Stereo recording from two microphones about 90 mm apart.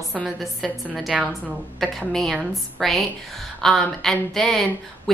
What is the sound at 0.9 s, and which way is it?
A woman's voice, 5° right (ahead or behind).